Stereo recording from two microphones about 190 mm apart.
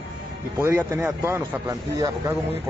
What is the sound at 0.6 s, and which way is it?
A man's voice, 15° right (ahead or behind).